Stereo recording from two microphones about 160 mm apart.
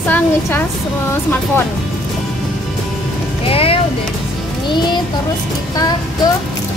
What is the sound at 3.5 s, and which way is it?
Music, 35° left (ahead or behind).